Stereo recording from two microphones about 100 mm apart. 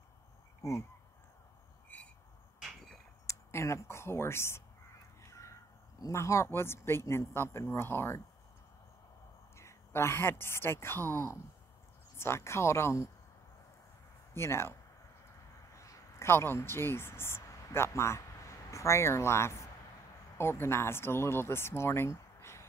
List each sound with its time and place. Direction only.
0.6 s speech: 30° left (ahead or behind)
2.6 s a sound: centre (ahead or behind)
3.3 s speech: 30° left (ahead or behind)
5.2 s fowl: 30° left (ahead or behind)
5.9 s speech: 35° left (ahead or behind)
9.6 s speech: 25° left (ahead or behind)
14.3 s speech: 25° left (ahead or behind)